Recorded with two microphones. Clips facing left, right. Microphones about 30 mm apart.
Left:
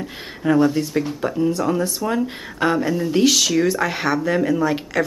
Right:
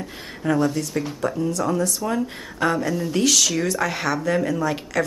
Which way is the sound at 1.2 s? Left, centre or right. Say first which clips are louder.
Left 2 dB; left.